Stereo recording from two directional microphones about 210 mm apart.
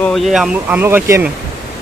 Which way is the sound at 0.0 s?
Centre (ahead or behind).